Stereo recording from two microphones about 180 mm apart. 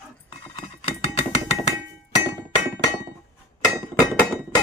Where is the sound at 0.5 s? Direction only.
35° left (ahead or behind).